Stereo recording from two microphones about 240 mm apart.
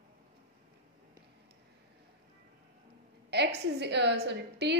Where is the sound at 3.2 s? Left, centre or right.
Right.